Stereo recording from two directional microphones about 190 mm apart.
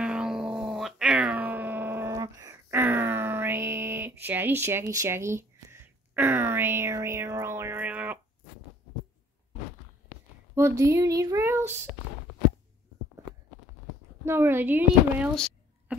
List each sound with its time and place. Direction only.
0.0 s cat: 5° right (ahead or behind)
4.2 s speech: 10° right (ahead or behind)
10.5 s speech: 15° right (ahead or behind)
14.2 s speech: 10° right (ahead or behind)
15.3 s a sound: 5° left (ahead or behind)